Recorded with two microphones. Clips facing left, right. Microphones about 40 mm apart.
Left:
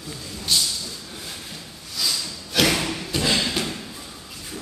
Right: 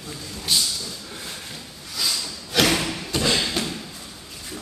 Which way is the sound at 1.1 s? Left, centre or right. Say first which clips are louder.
Right 1 dB; centre.